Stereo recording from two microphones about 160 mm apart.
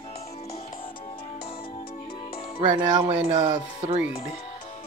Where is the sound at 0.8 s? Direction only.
35° left (ahead or behind).